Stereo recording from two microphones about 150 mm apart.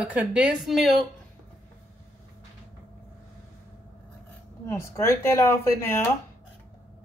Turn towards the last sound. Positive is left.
turn(degrees=15)  # may be behind; listen again after turning